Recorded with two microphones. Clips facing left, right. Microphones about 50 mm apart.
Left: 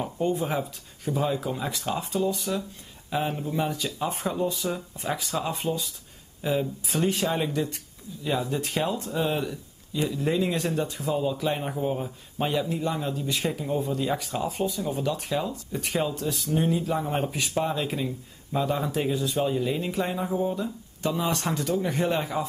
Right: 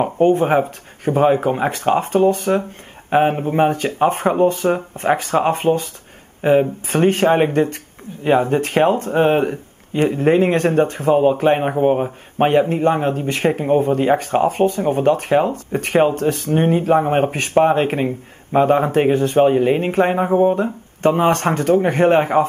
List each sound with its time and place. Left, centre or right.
0.0 s speech: right